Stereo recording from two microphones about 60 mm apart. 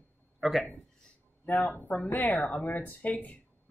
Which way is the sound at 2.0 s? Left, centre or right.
Left.